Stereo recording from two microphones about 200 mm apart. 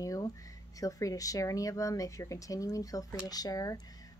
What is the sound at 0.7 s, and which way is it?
A woman's voice, 15° left (ahead or behind).